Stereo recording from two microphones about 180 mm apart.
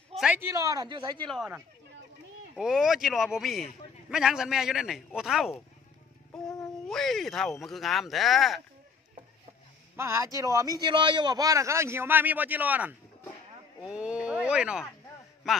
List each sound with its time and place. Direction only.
0.1 s speech: 5° right (ahead or behind); by 1.2 s 25° right (ahead or behind)
1.2 s a man's voice: centre (ahead or behind)
2.5 s a man's voice: centre (ahead or behind)
6.9 s a man's voice: centre (ahead or behind)
9.9 s a man's voice: 15° right (ahead or behind)